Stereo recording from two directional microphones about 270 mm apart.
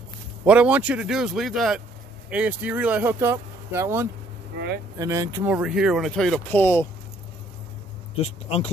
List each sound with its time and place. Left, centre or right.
0.5 s speech: centre
8.2 s speech: left